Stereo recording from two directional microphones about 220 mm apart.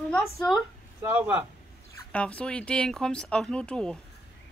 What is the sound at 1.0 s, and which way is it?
Speech, 5° right (ahead or behind).